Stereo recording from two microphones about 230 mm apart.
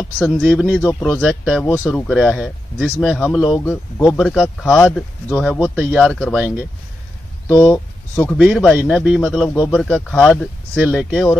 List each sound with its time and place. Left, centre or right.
0.0 s speech: centre
7.7 s speech: centre
8.4 s speech: centre